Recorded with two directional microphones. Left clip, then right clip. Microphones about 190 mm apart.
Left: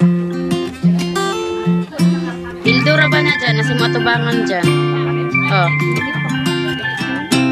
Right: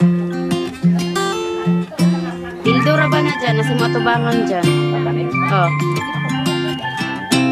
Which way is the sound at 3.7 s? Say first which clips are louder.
Left 1 dB; centre (ahead or behind).